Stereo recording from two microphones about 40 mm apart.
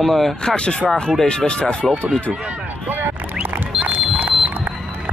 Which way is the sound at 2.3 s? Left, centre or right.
Right.